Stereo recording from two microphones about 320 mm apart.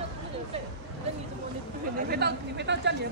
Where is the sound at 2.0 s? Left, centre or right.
Right.